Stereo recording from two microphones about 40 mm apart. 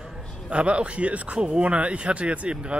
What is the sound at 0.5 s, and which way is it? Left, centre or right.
A man's voice, right.